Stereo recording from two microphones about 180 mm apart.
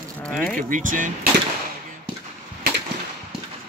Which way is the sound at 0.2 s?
10° left (ahead or behind).